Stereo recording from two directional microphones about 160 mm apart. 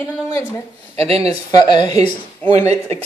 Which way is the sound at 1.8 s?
25° left (ahead or behind).